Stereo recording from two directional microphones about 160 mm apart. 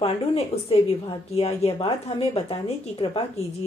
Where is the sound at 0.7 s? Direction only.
35° left (ahead or behind).